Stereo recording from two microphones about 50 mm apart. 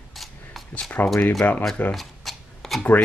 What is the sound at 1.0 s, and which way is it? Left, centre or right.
Speech, left.